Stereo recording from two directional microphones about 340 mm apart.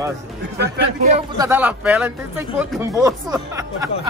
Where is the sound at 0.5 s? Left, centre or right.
Right.